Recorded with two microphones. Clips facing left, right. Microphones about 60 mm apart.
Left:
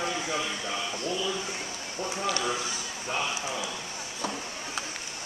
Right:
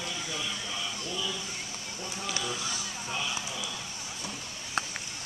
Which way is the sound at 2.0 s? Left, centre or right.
Left.